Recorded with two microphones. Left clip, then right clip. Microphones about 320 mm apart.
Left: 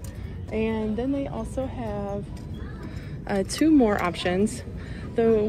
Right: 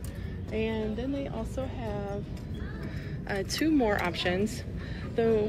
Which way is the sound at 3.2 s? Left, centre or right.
Centre.